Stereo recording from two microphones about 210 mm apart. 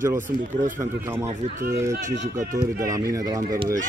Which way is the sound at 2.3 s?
35° right (ahead or behind).